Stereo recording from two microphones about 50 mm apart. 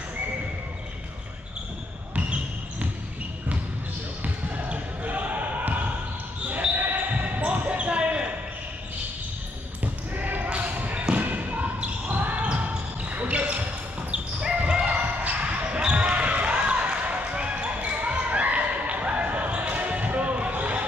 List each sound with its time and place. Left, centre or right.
2.1 s basketball bounce: right
4.2 s basketball bounce: right
9.8 s basketball bounce: right